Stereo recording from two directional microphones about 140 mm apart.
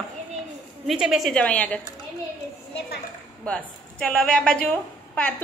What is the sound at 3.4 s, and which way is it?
A woman's voice, 5° left (ahead or behind).